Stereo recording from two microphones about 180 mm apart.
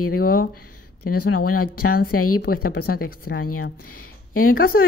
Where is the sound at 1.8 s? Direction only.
55° left (ahead or behind).